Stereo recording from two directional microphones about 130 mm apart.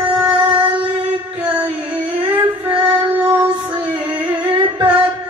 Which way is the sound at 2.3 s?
15° right (ahead or behind).